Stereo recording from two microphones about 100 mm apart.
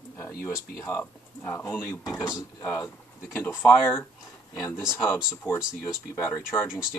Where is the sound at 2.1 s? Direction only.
10° right (ahead or behind).